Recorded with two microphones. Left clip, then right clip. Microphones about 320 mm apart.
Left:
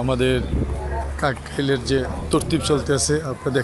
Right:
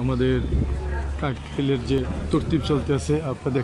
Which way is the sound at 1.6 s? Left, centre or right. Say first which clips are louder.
Left 3 dB; centre.